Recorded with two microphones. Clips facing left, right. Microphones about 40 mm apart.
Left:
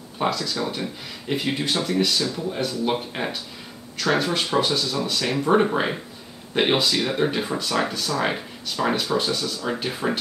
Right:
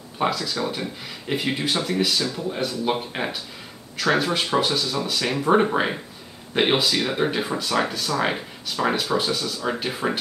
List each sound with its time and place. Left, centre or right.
0.2 s speech: centre